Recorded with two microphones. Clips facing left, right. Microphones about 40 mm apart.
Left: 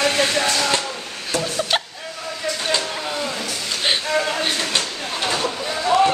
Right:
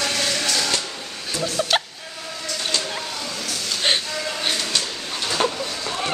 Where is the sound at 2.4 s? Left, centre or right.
Centre.